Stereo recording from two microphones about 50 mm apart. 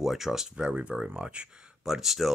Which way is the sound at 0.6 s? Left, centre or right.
Right.